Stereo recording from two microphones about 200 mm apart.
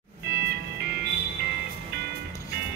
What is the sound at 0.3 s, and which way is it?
Music, 55° right (ahead or behind).